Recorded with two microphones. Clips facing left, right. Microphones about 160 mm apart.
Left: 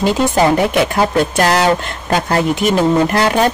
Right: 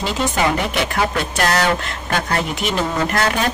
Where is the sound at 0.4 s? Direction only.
35° left (ahead or behind).